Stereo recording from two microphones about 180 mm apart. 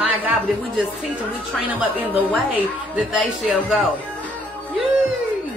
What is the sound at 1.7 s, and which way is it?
A woman's voice, 10° right (ahead or behind).